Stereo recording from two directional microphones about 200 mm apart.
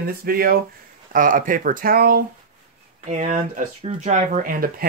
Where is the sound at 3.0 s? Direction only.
35° right (ahead or behind).